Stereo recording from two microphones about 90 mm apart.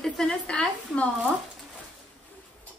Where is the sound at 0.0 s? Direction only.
5° left (ahead or behind).